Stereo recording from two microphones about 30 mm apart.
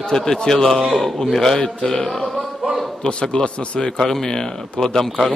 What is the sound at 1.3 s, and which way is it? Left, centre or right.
Speech, centre.